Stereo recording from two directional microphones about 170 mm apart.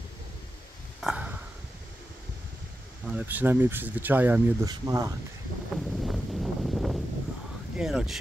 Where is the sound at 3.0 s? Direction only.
10° right (ahead or behind).